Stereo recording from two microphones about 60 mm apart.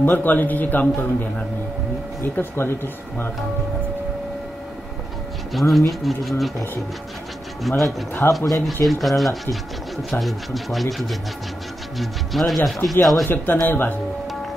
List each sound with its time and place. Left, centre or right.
0.0 s a man's voice: left
2.2 s a man's voice: left
5.5 s speech: centre
7.6 s speech: centre
13.7 s a man's voice: left